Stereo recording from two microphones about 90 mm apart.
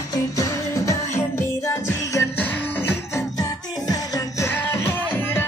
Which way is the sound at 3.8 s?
40° left (ahead or behind).